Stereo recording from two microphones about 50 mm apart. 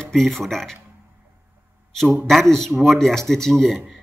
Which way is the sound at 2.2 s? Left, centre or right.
Centre.